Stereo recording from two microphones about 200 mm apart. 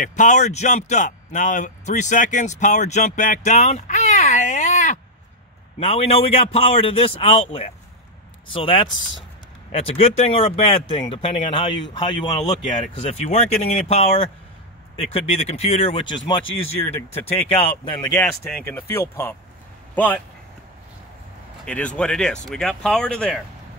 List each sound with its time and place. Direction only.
0.0 s a man's voice: 40° left (ahead or behind); by 12.5 s 20° left (ahead or behind)
12.9 s a man's voice: 35° left (ahead or behind)
16.4 s speech: 85° left
17.5 s speech: 30° left (ahead or behind)
18.1 s speech: 5° left (ahead or behind)
21.6 s speech: 5° left (ahead or behind)